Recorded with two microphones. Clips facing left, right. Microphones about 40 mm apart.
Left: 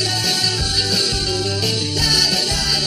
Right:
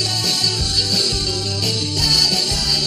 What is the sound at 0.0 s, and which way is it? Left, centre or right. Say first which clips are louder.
Music: left 1 dB; centre.